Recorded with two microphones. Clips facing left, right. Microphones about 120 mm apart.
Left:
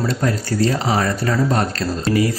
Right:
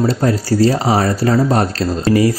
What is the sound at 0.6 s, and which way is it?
Speech, 35° right (ahead or behind).